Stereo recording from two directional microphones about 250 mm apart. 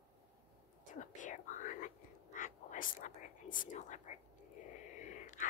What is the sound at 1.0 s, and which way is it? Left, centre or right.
Whispering, left.